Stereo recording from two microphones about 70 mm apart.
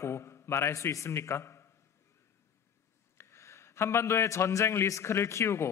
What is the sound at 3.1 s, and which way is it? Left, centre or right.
A man's voice, left.